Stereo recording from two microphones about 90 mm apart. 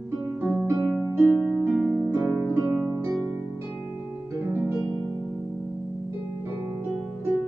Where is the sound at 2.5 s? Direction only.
25° right (ahead or behind).